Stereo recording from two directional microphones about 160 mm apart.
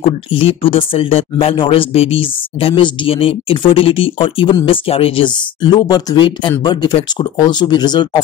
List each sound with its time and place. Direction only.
0.3 s speech: 35° left (ahead or behind)